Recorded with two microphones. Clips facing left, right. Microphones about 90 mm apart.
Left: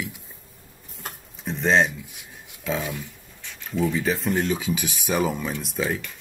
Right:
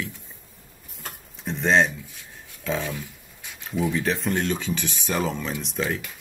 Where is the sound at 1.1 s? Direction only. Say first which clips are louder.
Even; centre (ahead or behind).